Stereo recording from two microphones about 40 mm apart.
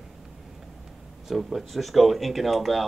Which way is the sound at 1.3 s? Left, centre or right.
Centre.